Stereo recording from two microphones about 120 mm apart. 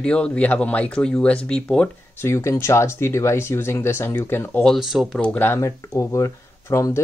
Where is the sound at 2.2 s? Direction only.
20° left (ahead or behind).